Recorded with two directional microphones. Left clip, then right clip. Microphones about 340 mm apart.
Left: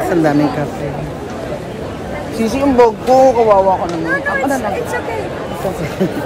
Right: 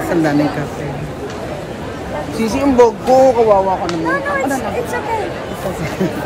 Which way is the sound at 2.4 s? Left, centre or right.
Centre.